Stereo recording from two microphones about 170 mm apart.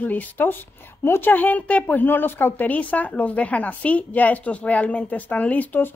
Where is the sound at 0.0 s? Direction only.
10° left (ahead or behind).